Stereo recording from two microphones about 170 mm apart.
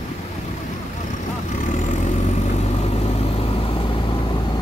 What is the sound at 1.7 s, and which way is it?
Vehicle, 45° left (ahead or behind).